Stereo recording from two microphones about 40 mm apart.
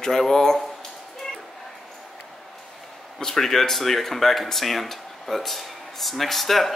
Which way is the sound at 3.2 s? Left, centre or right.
Centre.